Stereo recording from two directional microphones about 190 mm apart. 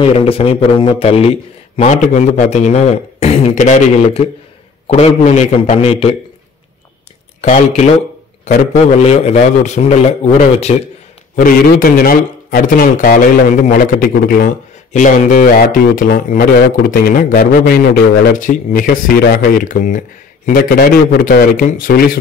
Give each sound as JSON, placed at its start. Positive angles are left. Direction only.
{"t": 0.0, "sound": "a man's voice", "side_deg": 30}
{"t": 7.4, "sound": "a man's voice", "side_deg": 40}
{"t": 9.0, "sound": "a man's voice", "side_deg": 35}
{"t": 11.3, "sound": "a man's voice", "side_deg": 50}